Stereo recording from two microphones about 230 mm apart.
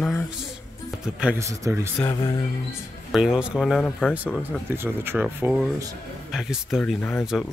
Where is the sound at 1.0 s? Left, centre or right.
Centre.